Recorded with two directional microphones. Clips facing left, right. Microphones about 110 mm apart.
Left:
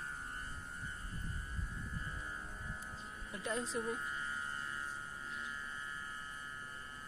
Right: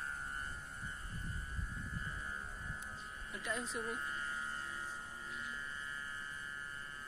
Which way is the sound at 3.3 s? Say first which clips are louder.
Left 3 dB; 30° left (ahead or behind).